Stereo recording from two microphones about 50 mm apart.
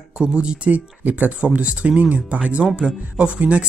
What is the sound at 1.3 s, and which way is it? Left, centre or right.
Speech, right.